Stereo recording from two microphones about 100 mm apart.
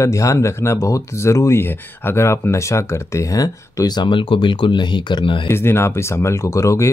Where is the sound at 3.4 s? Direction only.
40° left (ahead or behind).